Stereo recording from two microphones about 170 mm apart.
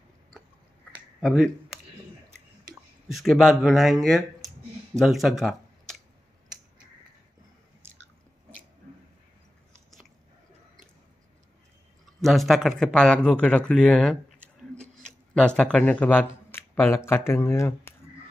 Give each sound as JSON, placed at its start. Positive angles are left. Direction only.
{"t": 3.1, "sound": "speech", "side_deg": 0}
{"t": 12.2, "sound": "speech", "side_deg": 0}